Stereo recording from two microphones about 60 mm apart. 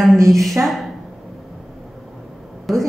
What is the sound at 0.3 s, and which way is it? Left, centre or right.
Speech, centre.